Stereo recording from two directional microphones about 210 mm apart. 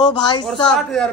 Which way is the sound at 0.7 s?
5° left (ahead or behind).